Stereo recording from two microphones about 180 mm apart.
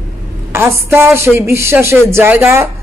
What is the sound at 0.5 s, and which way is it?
A man's voice, 15° right (ahead or behind).